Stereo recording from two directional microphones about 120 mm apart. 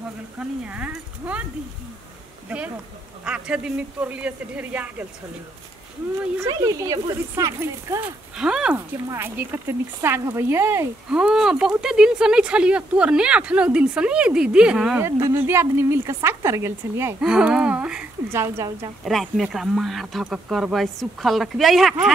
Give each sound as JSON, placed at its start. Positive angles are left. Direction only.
{"t": 0.4, "sound": "speech", "side_deg": -10}
{"t": 3.3, "sound": "speech", "side_deg": -10}
{"t": 6.4, "sound": "a woman's voice", "side_deg": -30}
{"t": 8.4, "sound": "speech", "side_deg": -5}
{"t": 8.7, "sound": "a woman's voice", "side_deg": -20}
{"t": 11.1, "sound": "speech", "side_deg": -5}
{"t": 15.0, "sound": "a woman's voice", "side_deg": -25}
{"t": 17.2, "sound": "speech", "side_deg": -5}
{"t": 18.3, "sound": "a woman's voice", "side_deg": -20}
{"t": 19.0, "sound": "speech", "side_deg": 0}